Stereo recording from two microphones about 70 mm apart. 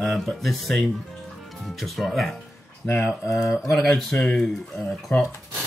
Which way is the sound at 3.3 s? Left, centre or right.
Centre.